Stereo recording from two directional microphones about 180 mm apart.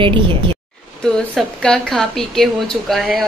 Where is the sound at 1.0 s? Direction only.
5° left (ahead or behind).